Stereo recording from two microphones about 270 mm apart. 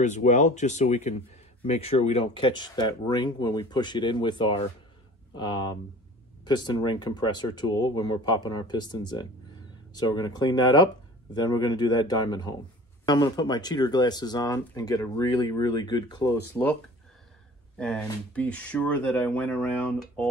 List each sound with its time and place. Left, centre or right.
0.0 s speech: left; by 16.7 s centre
17.7 s speech: centre